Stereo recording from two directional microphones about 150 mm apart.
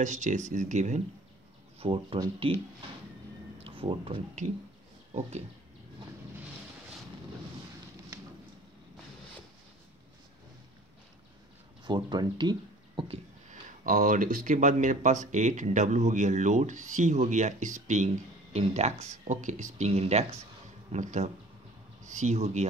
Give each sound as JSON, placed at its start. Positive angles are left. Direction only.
{"t": 0.0, "sound": "speech", "side_deg": -50}
{"t": 1.8, "sound": "speech", "side_deg": -40}
{"t": 3.5, "sound": "a sound", "side_deg": -40}
{"t": 11.8, "sound": "speech", "side_deg": -30}
{"t": 13.5, "sound": "speech", "side_deg": -60}